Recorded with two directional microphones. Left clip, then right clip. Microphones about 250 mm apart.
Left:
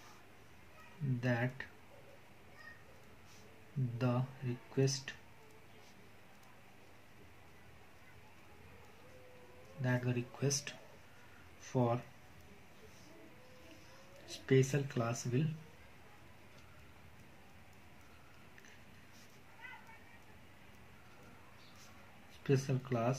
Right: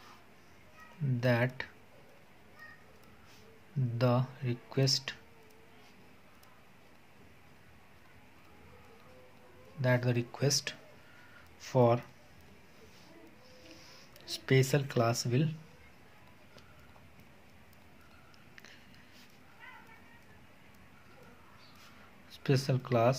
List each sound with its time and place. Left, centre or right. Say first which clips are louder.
1.2 s speech: right 8 dB; right
4.0 s speech: right 8 dB; right
9.8 s speech: right 8 dB; right
14.2 s speech: right 3 dB; right
22.3 s speech: right 3 dB; right